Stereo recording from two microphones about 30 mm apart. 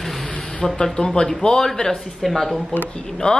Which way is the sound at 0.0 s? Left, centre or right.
Centre.